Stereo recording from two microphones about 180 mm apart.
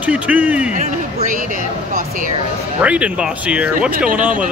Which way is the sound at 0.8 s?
50° right (ahead or behind).